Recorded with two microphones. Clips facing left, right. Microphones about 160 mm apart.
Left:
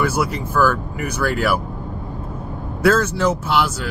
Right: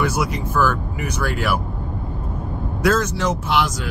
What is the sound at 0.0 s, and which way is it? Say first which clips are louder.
Speech: left 1 dB; 10° left (ahead or behind).